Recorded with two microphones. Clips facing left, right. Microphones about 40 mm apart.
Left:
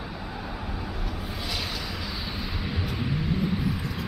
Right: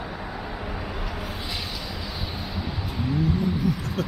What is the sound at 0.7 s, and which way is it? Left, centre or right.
Vehicle, right.